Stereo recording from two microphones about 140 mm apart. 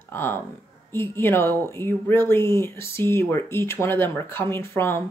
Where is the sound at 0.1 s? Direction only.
15° left (ahead or behind).